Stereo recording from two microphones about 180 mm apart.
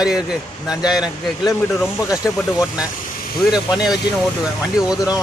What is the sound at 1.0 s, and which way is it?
Speech, 20° left (ahead or behind).